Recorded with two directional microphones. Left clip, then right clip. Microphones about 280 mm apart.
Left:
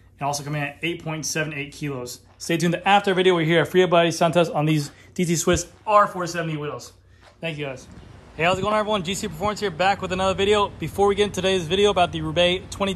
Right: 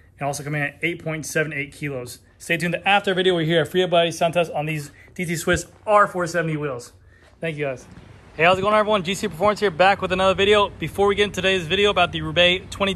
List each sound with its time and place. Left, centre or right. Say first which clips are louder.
0.2 s speech: right 1 dB; centre
4.3 s speech: left 1 dB; left
4.6 s speech: left 5 dB; centre